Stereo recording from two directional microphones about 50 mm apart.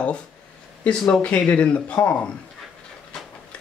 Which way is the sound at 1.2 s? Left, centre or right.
Left.